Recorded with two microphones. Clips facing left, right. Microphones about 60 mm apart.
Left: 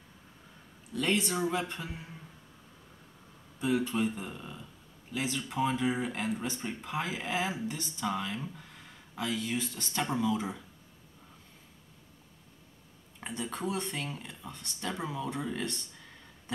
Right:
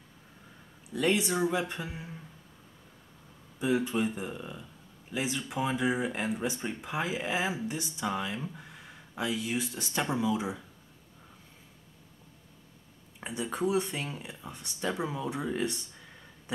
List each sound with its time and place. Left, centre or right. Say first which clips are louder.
0.9 s speech: right 2 dB; centre
3.5 s speech: right 1 dB; centre
13.2 s speech: right 4 dB; centre